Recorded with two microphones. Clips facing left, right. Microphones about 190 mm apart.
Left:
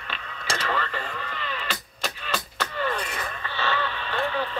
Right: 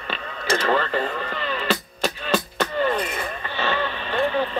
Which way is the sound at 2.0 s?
35° right (ahead or behind).